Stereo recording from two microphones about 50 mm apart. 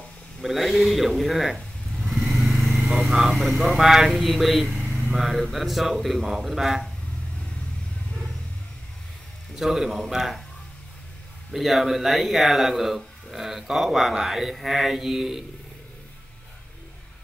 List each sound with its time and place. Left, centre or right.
0.4 s speech: centre
2.0 s vehicle: centre
3.1 s speech: centre
9.6 s speech: centre
11.5 s speech: centre